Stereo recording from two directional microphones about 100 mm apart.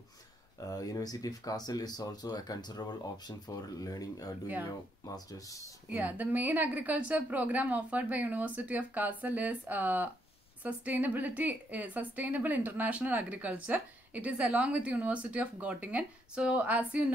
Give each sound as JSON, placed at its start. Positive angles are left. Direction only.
{"t": 0.6, "sound": "speech", "side_deg": 35}
{"t": 5.9, "sound": "a woman's voice", "side_deg": -15}